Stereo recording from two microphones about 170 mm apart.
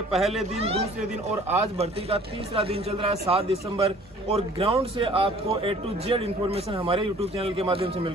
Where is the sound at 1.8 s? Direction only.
35° right (ahead or behind).